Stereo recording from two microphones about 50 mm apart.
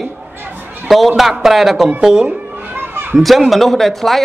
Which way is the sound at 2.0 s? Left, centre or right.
Centre.